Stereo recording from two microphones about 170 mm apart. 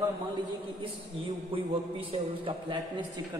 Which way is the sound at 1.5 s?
30° right (ahead or behind).